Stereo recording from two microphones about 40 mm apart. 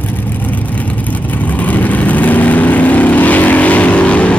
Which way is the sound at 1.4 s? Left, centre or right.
Left.